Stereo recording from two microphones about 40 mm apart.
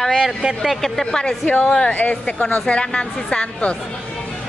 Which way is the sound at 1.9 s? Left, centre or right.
Left.